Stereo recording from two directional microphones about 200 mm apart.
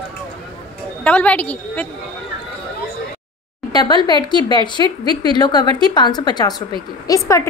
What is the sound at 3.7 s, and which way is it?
A woman's voice, 20° left (ahead or behind).